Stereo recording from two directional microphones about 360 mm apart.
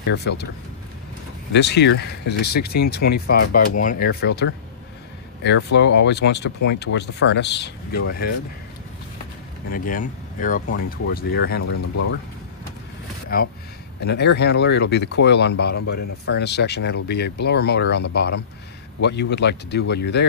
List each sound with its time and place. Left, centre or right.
0.0 s speech: left
1.5 s speech: left
9.7 s speech: left
13.3 s speech: left